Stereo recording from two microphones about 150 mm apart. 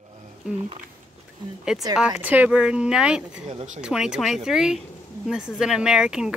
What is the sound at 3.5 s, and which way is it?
Speech, 45° right (ahead or behind).